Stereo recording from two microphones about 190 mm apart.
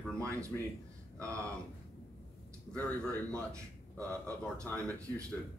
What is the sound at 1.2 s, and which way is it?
Speech, 15° right (ahead or behind).